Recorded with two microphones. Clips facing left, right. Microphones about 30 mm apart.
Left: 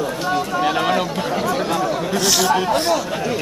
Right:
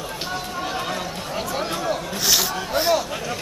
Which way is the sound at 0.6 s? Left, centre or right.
Left.